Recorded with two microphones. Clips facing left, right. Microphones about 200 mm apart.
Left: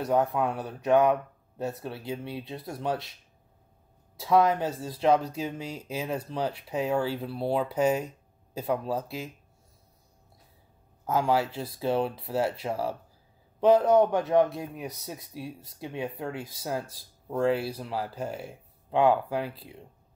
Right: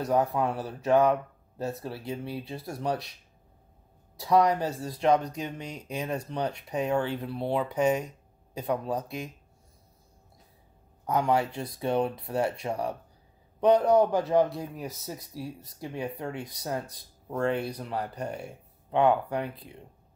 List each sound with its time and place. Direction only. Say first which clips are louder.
0.0 s speech: even; centre (ahead or behind)
4.2 s speech: even; centre (ahead or behind)
11.1 s speech: even; 5° left (ahead or behind)